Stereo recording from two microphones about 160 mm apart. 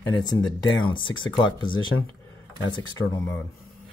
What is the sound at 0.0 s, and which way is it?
Speech, 20° left (ahead or behind).